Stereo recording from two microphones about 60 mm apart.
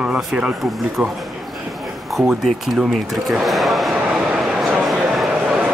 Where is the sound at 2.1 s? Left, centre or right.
Centre.